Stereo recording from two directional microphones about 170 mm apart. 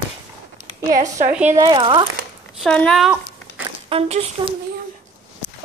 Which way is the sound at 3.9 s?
35° right (ahead or behind).